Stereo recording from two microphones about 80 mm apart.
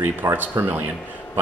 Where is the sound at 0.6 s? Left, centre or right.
Right.